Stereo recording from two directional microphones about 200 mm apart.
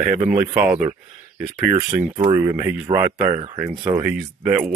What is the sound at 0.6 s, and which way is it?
Speech, 5° right (ahead or behind).